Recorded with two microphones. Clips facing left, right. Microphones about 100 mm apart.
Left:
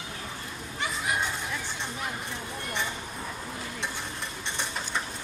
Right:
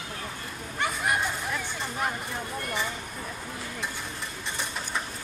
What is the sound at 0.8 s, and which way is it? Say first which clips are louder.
Chatter: right 3 dB; 55° right (ahead or behind).